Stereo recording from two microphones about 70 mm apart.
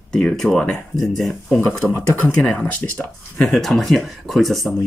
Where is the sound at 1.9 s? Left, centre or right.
Left.